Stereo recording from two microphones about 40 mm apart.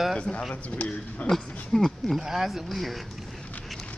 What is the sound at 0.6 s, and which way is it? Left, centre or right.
Speech, left.